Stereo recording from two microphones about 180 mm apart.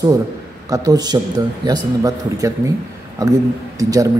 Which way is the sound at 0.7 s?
20° right (ahead or behind).